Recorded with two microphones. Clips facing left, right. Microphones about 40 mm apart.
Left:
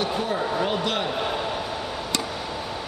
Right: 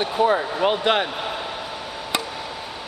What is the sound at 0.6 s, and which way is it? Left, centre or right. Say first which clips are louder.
Speech: right 5 dB; right.